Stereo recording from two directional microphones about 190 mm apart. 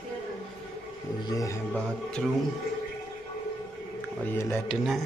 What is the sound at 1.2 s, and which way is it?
Speech, 20° left (ahead or behind).